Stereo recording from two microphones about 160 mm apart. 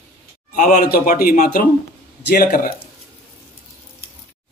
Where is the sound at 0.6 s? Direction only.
55° left (ahead or behind).